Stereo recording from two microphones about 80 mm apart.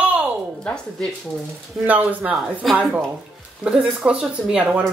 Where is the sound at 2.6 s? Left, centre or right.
Centre.